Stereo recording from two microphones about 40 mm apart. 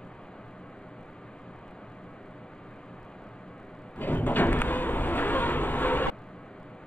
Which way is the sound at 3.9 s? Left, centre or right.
Left.